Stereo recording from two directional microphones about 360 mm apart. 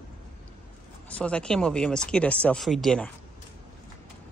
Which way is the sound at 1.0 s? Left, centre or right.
Centre.